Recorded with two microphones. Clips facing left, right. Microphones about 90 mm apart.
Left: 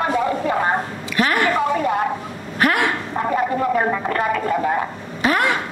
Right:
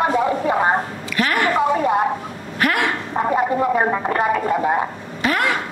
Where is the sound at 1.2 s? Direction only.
25° left (ahead or behind).